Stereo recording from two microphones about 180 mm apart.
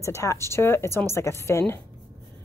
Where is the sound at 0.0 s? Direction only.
15° left (ahead or behind).